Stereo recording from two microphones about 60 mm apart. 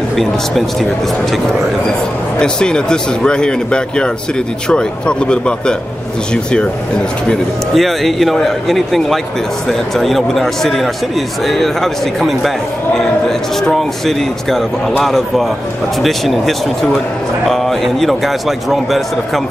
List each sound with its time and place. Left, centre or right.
0.1 s speech: centre
2.3 s speech: centre
7.7 s speech: centre